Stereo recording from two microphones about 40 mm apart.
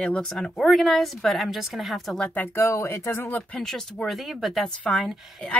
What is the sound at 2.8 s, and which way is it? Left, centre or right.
Speech, left.